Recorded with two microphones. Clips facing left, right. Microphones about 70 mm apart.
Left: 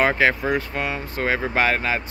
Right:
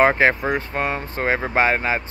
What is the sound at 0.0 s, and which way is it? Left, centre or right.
Speech, right.